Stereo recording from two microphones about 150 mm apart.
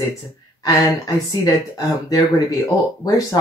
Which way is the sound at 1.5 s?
25° left (ahead or behind).